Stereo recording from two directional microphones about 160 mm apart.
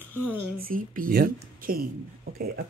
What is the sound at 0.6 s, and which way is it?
A woman's voice, 60° right (ahead or behind).